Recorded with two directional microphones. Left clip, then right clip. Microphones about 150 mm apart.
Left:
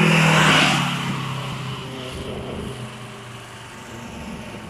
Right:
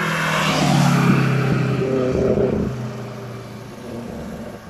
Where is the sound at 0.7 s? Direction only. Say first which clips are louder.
Right 3 dB; 85° right.